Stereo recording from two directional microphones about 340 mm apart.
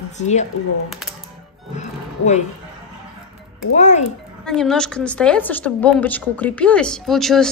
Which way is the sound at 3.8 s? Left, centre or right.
Centre.